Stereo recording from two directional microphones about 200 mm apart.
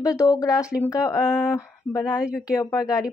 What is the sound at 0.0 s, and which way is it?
Speech, 15° left (ahead or behind).